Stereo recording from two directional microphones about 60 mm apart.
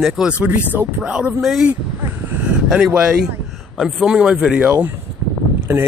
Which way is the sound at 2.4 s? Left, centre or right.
Centre.